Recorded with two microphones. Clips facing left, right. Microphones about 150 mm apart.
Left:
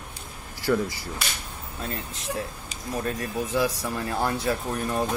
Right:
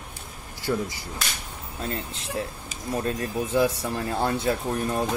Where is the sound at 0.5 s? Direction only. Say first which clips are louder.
Left 3 dB; 20° right (ahead or behind).